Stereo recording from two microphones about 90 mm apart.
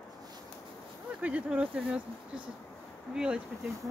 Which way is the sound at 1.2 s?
15° right (ahead or behind).